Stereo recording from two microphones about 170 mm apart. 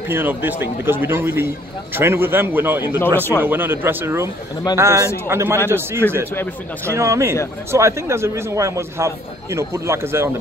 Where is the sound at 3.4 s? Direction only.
10° right (ahead or behind).